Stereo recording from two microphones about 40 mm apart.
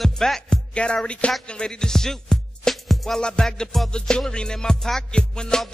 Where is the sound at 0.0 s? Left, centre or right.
Centre.